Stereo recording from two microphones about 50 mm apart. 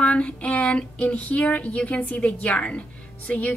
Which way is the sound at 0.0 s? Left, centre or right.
Left.